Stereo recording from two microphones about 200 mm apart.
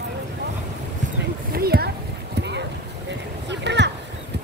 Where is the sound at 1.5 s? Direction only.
50° right (ahead or behind).